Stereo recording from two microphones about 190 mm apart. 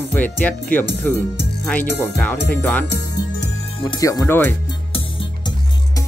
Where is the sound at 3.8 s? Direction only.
20° left (ahead or behind).